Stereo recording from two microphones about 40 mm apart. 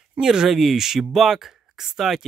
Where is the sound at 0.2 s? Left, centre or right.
Centre.